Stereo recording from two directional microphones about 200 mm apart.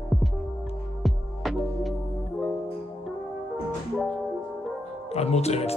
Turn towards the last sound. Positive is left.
turn(degrees=30)  # may be behind; listen again after turning